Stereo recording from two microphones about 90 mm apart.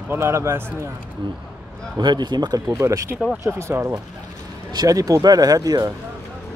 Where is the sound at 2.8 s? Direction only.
35° right (ahead or behind).